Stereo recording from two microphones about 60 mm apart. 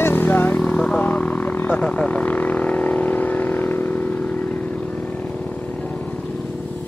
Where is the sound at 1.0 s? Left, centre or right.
Left.